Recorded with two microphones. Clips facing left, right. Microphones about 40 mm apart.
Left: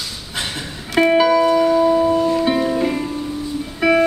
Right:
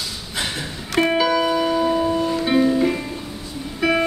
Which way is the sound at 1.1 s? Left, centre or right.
Centre.